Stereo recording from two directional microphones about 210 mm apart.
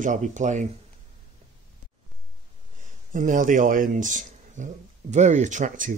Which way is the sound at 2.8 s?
40° right (ahead or behind).